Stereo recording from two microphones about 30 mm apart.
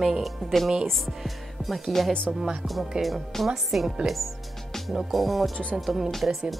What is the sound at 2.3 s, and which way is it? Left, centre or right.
Speech, centre.